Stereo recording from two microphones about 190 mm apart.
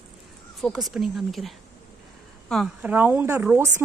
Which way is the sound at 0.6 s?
Centre (ahead or behind).